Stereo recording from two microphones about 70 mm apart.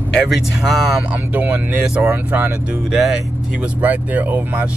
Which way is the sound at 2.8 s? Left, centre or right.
Centre.